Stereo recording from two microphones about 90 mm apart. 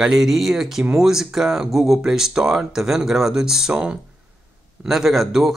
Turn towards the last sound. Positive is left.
turn(degrees=-5)  # may be behind; listen again after turning